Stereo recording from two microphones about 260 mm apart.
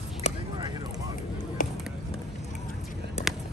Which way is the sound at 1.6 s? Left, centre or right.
Left.